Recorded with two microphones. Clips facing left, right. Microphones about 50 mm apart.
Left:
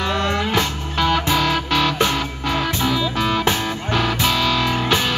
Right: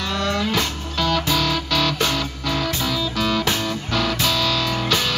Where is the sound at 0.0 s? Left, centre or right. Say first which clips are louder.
Left 2 dB; left.